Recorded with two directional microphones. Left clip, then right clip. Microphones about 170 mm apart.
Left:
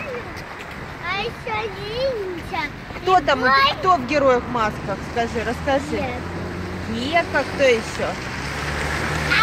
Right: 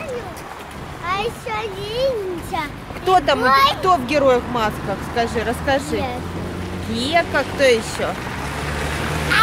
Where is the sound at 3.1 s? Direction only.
Centre (ahead or behind).